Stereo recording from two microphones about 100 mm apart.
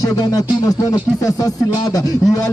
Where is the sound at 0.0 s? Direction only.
40° left (ahead or behind).